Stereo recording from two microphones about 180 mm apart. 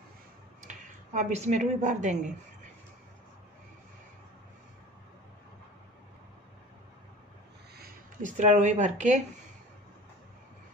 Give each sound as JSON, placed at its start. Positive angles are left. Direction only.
{"t": 0.7, "sound": "speech", "side_deg": -40}
{"t": 7.7, "sound": "a sound", "side_deg": -55}
{"t": 8.4, "sound": "speech", "side_deg": -40}